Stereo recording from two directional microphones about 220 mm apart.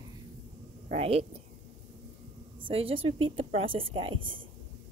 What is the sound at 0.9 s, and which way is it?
Speech, 30° right (ahead or behind).